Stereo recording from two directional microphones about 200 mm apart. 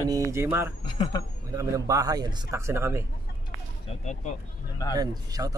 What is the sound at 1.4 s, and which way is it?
Speech, 15° right (ahead or behind).